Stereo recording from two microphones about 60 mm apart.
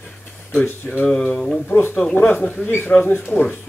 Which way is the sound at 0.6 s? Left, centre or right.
Centre.